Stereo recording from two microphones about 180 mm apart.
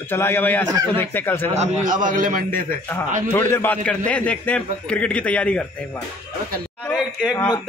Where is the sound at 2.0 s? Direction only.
50° right (ahead or behind).